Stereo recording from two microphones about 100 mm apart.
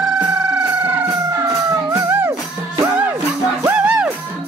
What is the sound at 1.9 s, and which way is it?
Music, 25° right (ahead or behind).